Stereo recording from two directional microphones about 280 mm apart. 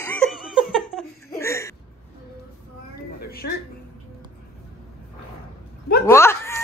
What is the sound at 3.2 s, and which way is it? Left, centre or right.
Music, left.